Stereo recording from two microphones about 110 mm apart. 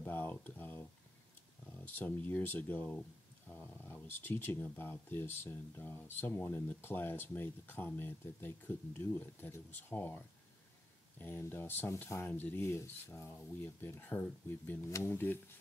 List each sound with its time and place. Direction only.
0.0 s speech: 20° left (ahead or behind)